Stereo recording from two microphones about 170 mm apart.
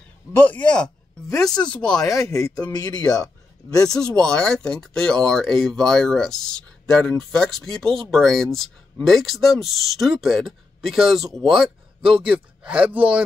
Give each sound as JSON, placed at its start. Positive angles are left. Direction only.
{"t": 0.3, "sound": "speech", "side_deg": 10}
{"t": 2.0, "sound": "speech", "side_deg": 20}
{"t": 4.0, "sound": "speech", "side_deg": 5}